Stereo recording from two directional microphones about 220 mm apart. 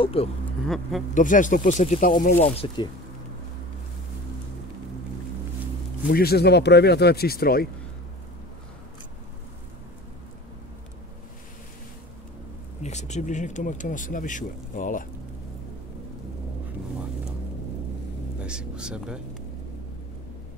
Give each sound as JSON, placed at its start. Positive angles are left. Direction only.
{"t": 0.0, "sound": "speech", "side_deg": 25}
{"t": 6.0, "sound": "speech", "side_deg": 45}
{"t": 12.8, "sound": "speech", "side_deg": 30}
{"t": 18.4, "sound": "speech", "side_deg": -5}